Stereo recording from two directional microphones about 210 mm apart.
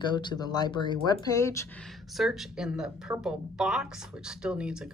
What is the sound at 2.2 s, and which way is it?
A woman's voice, centre (ahead or behind).